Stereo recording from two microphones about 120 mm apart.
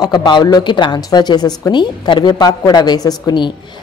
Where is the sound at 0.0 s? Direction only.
40° left (ahead or behind).